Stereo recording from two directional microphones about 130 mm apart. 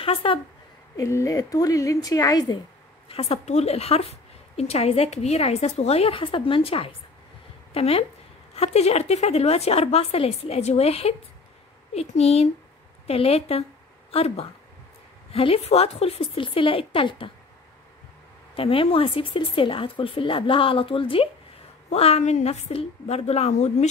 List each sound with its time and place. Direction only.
0.0 s a woman's voice: 45° left (ahead or behind)
0.9 s a woman's voice: 25° left (ahead or behind)
3.1 s a woman's voice: 50° left (ahead or behind)
18.6 s a woman's voice: 45° left (ahead or behind)